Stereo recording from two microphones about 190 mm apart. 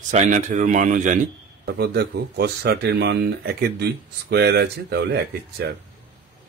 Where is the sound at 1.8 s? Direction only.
60° right (ahead or behind).